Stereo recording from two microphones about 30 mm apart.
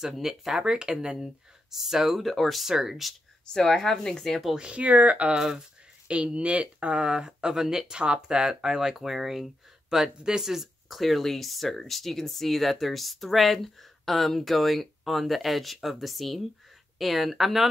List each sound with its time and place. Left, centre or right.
0.0 s speech: centre
0.6 s speech: right
1.7 s speech: centre
2.2 s speech: centre
2.6 s speech: centre
3.4 s speech: left
3.7 s speech: centre
4.6 s speech: right
4.8 s speech: right
6.0 s speech: right
7.1 s speech: right
10.4 s speech: centre